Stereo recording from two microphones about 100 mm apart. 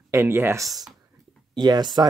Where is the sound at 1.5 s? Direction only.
45° right (ahead or behind).